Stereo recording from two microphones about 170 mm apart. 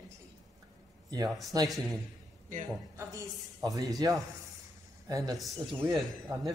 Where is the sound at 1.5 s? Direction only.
25° right (ahead or behind).